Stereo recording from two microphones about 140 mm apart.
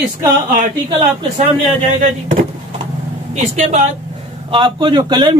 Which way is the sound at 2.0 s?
55° right (ahead or behind).